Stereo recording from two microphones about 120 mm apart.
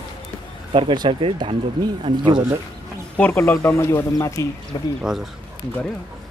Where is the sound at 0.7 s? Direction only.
40° right (ahead or behind).